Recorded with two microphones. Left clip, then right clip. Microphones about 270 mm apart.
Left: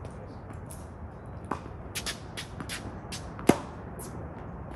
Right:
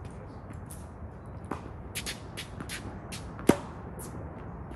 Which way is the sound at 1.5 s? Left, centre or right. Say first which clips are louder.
Left 3 dB; centre.